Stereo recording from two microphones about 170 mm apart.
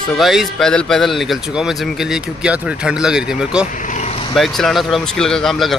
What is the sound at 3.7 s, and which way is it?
Vehicle, 50° left (ahead or behind).